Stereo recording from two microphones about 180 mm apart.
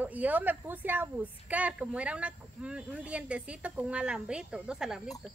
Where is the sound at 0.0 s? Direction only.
10° right (ahead or behind).